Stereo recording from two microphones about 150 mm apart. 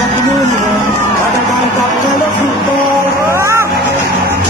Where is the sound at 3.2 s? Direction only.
15° right (ahead or behind).